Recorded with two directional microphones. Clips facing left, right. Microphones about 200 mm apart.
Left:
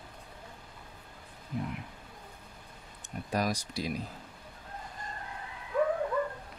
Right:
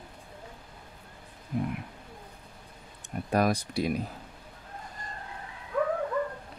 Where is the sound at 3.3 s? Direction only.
55° right (ahead or behind).